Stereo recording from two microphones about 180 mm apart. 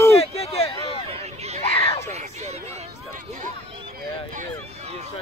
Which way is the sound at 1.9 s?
15° left (ahead or behind).